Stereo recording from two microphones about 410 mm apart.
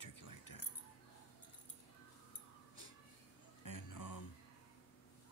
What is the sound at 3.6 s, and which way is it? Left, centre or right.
Music, left.